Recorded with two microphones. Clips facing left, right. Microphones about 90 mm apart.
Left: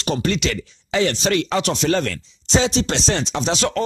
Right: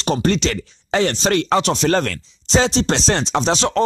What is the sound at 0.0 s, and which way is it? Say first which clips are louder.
Speech: right 3 dB; 35° right (ahead or behind).